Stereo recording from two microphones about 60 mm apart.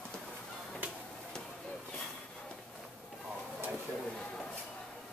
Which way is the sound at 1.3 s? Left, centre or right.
Centre.